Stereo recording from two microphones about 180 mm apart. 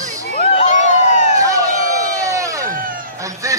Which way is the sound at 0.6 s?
40° left (ahead or behind).